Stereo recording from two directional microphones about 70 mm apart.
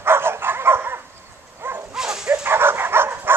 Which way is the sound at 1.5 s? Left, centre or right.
Right.